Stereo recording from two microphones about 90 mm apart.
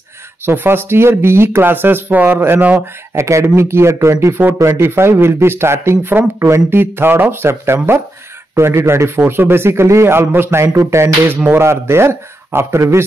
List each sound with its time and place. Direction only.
0.5 s a man's voice: 25° right (ahead or behind)
3.2 s a man's voice: 30° right (ahead or behind)